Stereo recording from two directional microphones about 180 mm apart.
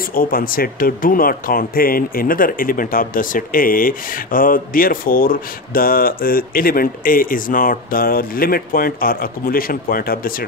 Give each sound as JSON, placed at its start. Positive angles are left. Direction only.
{"t": 0.1, "sound": "speech", "side_deg": 50}